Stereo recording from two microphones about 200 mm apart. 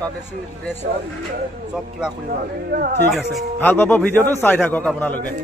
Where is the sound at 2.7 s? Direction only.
45° right (ahead or behind).